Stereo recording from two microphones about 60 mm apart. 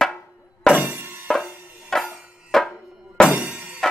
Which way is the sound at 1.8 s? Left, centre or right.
Centre.